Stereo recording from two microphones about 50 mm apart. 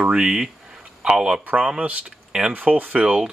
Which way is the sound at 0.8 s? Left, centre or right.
Right.